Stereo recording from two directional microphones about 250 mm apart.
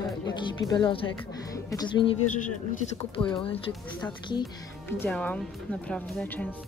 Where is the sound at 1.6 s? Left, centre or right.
Centre.